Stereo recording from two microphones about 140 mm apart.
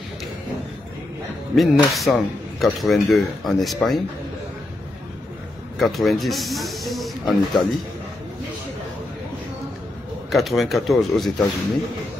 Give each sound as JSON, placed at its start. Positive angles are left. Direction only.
{"t": 1.5, "sound": "a man's voice", "side_deg": 0}
{"t": 5.8, "sound": "a man's voice", "side_deg": 0}
{"t": 10.3, "sound": "a man's voice", "side_deg": 0}